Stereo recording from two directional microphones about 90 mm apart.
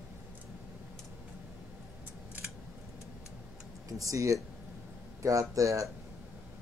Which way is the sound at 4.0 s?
35° right (ahead or behind).